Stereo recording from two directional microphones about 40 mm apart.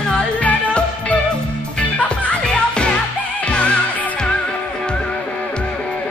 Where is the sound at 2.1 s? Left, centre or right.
Left.